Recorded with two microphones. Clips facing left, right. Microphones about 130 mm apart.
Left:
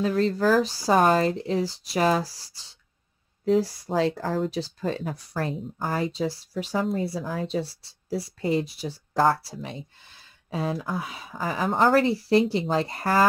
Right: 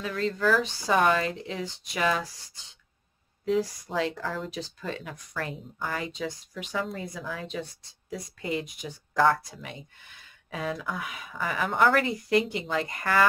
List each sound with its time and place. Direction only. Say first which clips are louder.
0.0 s speech: left 5 dB; 35° left (ahead or behind)